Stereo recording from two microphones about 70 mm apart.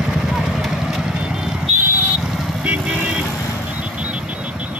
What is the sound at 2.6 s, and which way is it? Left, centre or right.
Vehicle, centre.